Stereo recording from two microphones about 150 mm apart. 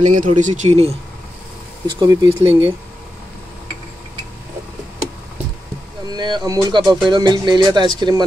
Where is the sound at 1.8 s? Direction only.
30° right (ahead or behind).